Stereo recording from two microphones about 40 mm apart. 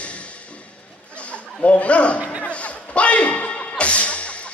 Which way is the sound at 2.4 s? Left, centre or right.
Left.